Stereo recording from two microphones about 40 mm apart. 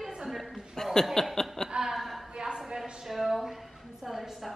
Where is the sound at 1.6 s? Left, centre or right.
Centre.